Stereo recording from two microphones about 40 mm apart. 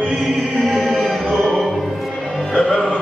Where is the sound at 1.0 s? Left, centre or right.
Centre.